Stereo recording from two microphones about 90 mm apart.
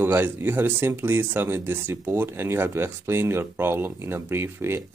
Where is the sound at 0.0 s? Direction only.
25° right (ahead or behind).